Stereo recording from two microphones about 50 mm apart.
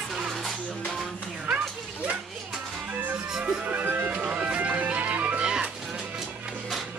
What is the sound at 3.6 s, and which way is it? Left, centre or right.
Music, right.